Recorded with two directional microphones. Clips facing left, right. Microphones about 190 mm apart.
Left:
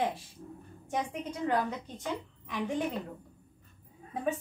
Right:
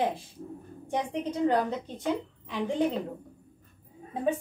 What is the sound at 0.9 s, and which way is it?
A woman's voice, 30° right (ahead or behind).